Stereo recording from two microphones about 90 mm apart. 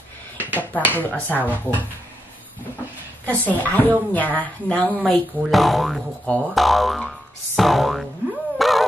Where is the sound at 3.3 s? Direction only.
20° left (ahead or behind).